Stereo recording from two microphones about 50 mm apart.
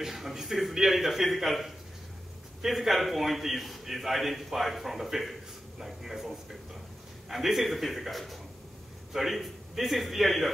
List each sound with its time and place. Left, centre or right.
0.0 s a man's voice: centre